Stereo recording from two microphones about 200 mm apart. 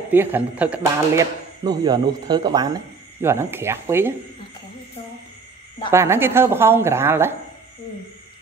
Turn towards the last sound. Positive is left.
turn(degrees=-10)  # may be behind; listen again after turning